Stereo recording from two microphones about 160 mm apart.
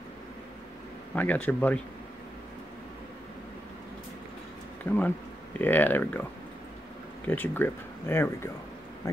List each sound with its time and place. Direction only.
1.1 s speech: 10° left (ahead or behind)
4.9 s speech: 10° left (ahead or behind)
7.2 s speech: 10° left (ahead or behind)